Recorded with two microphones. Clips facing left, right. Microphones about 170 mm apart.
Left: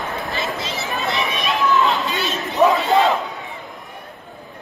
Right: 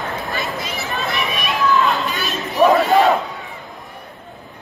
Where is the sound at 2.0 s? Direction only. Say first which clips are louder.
Even; 20° left (ahead or behind).